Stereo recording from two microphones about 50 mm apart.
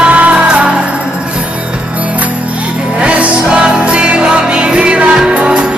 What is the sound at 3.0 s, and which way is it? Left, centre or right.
Music, right.